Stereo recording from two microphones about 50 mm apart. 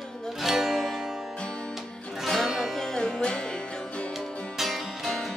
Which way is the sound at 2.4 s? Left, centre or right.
Centre.